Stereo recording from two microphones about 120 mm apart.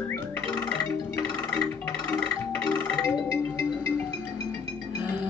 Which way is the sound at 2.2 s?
15° left (ahead or behind).